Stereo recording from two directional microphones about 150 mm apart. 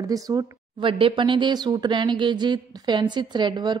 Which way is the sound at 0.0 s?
25° right (ahead or behind).